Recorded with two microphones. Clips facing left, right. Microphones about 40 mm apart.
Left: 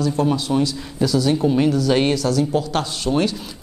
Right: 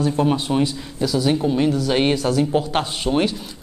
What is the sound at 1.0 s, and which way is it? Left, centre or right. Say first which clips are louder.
Speech: left 1 dB; centre.